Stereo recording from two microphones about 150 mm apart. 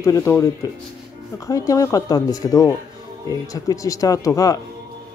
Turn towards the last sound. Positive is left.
turn(degrees=20)  # may be behind; listen again after turning